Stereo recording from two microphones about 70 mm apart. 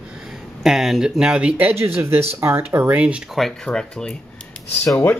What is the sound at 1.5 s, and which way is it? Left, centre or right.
Speech, right.